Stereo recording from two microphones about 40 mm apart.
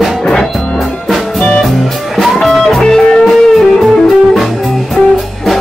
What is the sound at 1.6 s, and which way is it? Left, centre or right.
Music, centre.